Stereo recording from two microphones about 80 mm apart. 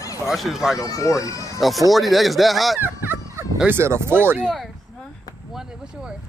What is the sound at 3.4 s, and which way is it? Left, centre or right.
Fowl, right.